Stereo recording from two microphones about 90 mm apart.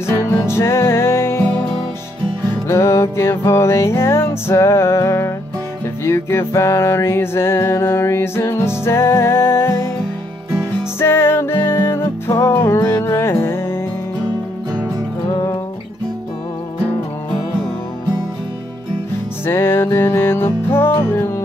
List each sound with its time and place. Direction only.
0.0 s music: 30° left (ahead or behind)
2.7 s music: 30° left (ahead or behind)
11.0 s music: 25° left (ahead or behind)
15.3 s music: 40° left (ahead or behind)
19.4 s music: 25° left (ahead or behind)